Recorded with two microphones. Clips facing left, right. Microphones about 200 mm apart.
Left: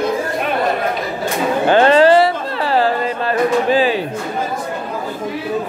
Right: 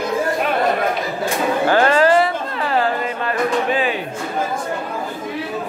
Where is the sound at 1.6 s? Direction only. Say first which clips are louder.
Left 5 dB; 25° left (ahead or behind).